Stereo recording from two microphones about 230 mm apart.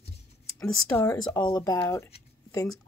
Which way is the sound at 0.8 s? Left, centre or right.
Centre.